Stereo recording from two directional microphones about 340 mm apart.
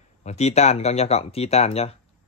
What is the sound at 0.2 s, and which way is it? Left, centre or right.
Speech, centre.